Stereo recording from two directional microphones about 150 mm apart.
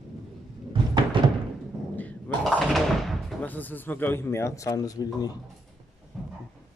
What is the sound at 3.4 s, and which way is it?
A man's voice, 10° left (ahead or behind).